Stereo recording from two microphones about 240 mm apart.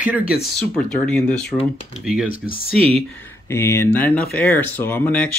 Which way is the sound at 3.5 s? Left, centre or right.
Centre.